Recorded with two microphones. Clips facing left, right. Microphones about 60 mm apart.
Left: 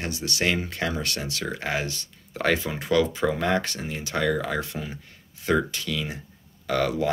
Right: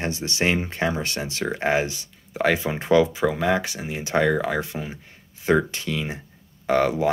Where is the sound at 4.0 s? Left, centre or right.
Right.